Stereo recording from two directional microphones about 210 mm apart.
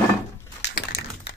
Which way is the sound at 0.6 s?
50° left (ahead or behind).